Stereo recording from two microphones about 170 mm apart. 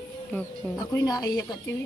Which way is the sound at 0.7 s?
20° left (ahead or behind).